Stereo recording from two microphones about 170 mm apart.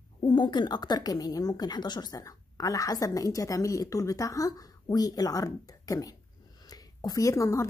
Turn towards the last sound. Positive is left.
turn(degrees=20)  # may be behind; listen again after turning